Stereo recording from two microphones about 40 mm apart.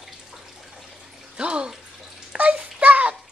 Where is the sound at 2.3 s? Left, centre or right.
Right.